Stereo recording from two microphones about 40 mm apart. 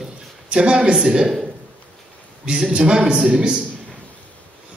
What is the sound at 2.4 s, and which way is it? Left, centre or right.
Speech, centre.